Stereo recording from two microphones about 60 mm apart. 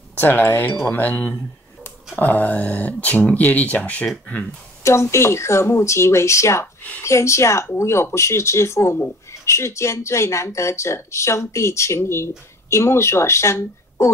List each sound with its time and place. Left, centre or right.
0.1 s speech: left
4.8 s speech: left